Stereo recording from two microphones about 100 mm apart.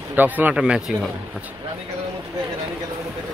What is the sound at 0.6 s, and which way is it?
Speech, 5° right (ahead or behind).